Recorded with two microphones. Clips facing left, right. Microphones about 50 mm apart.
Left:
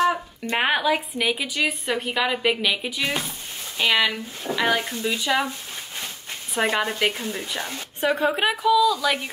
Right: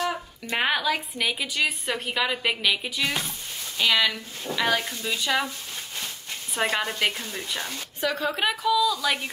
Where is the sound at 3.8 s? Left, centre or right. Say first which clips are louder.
Left 2 dB; left.